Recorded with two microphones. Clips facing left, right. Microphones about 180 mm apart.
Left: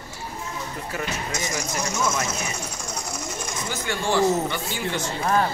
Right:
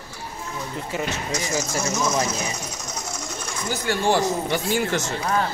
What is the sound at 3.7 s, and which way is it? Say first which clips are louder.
Speech: right 3 dB; 40° right (ahead or behind).